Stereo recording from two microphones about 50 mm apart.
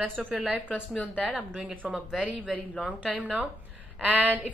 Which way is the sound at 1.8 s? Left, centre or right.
Right.